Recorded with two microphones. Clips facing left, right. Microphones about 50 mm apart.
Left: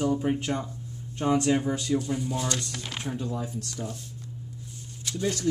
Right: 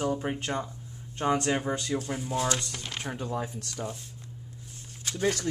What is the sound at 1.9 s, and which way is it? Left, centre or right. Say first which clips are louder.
Speech: left 4 dB; right.